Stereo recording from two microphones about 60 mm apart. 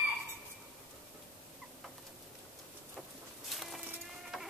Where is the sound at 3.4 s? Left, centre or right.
Centre.